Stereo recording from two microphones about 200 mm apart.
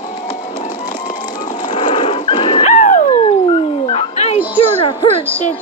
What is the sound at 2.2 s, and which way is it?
Dog, 25° left (ahead or behind).